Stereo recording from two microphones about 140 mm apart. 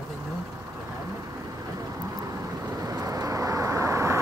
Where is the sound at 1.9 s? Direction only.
25° right (ahead or behind).